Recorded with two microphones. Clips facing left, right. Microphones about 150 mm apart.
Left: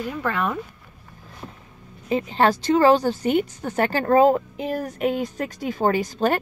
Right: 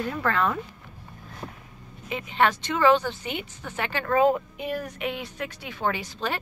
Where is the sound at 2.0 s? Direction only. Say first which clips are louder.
Left 4 dB; 35° left (ahead or behind).